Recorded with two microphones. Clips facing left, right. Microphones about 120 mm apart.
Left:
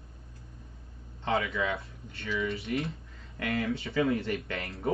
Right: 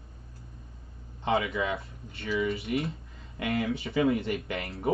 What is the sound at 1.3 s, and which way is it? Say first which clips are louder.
Speech: right 2 dB; 25° right (ahead or behind).